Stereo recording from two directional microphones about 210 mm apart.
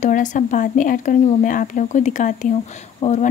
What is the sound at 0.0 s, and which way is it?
Speech, 35° left (ahead or behind).